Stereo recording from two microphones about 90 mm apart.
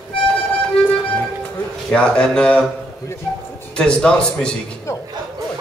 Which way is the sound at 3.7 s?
10° left (ahead or behind).